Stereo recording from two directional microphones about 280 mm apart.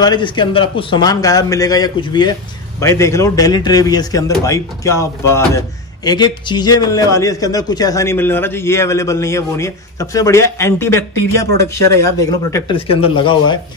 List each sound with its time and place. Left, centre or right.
0.0 s a man's voice: centre